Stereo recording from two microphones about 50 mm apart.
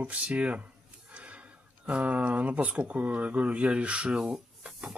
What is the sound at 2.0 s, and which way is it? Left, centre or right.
Speech, right.